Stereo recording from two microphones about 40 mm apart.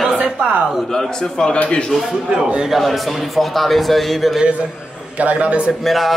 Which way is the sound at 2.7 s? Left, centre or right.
Centre.